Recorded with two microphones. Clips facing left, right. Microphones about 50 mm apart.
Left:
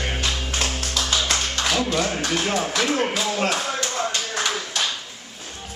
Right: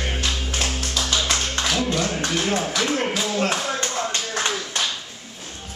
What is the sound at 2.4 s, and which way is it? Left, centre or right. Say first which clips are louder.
Speech: right 1 dB; centre.